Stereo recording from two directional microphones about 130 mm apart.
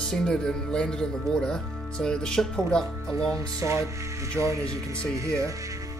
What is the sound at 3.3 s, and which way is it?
Speech, 25° right (ahead or behind).